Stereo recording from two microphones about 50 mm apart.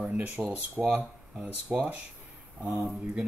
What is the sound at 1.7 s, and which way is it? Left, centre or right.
Speech, right.